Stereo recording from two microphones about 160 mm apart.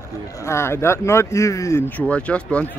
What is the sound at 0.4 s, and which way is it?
Speech, 15° left (ahead or behind).